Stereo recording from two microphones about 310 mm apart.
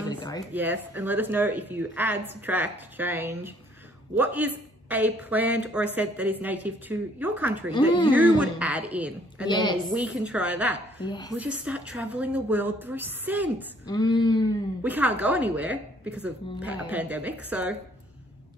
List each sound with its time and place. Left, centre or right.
0.1 s a sound: centre
0.5 s speech: centre
7.7 s speech: centre
8.1 s speech: centre
9.5 s speech: centre
9.9 s speech: centre
11.1 s speech: centre
11.3 s speech: centre
13.8 s speech: centre
14.8 s speech: centre